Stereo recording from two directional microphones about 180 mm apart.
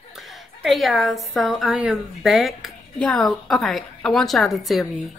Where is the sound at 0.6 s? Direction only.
Centre (ahead or behind).